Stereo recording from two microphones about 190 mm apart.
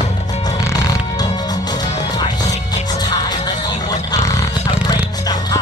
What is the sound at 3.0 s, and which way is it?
Music, 20° left (ahead or behind).